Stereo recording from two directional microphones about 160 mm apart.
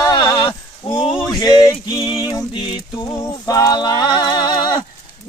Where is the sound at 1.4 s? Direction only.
25° left (ahead or behind).